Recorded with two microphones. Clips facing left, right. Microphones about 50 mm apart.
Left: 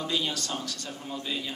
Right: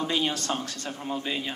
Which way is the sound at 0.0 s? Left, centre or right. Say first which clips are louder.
Right 3 dB; right.